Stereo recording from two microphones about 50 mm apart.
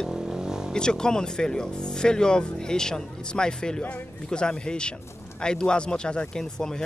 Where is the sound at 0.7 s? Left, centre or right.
Centre.